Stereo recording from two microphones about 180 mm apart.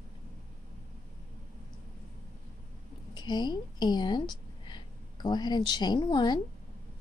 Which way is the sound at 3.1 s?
25° left (ahead or behind).